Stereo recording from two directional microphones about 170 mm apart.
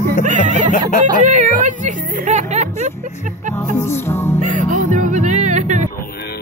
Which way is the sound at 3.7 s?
15° left (ahead or behind).